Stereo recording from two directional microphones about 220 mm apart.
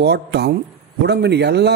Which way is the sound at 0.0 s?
50° right (ahead or behind).